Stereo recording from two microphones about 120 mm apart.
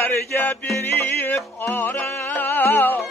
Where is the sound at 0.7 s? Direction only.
15° left (ahead or behind).